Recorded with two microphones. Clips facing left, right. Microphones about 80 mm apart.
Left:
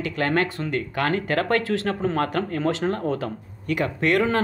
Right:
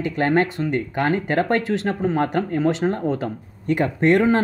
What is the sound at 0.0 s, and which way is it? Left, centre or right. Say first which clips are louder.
Speech: right 4 dB; right.